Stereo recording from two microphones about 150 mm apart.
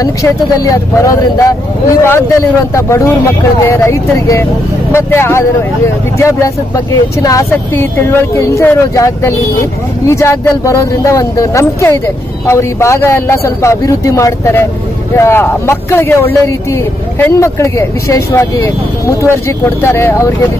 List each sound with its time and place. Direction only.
0.0 s a man's voice: 20° left (ahead or behind)